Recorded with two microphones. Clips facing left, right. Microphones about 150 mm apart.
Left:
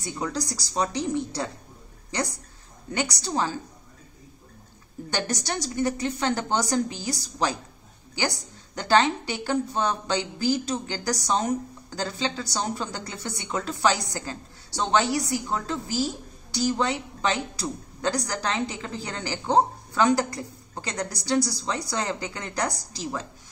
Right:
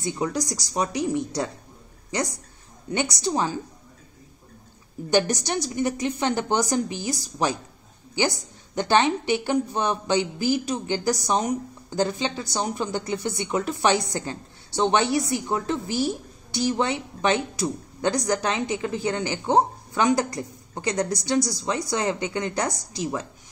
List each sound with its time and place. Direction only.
0.0 s a woman's voice: 20° right (ahead or behind)
5.1 s a woman's voice: 15° right (ahead or behind)